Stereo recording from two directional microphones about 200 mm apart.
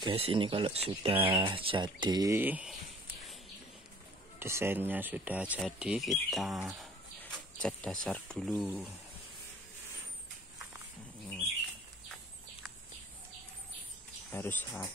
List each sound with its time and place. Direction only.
0.0 s speech: 30° right (ahead or behind); by 2.7 s 10° right (ahead or behind)
4.4 s speech: 10° right (ahead or behind); by 8.8 s 5° left (ahead or behind)
14.3 s speech: 10° left (ahead or behind)